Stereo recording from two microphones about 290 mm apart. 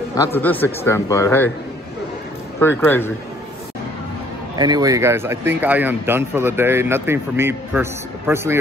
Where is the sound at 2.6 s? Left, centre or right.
Centre.